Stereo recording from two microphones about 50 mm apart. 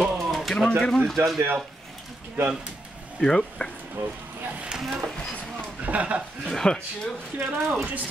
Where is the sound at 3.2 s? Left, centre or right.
Centre.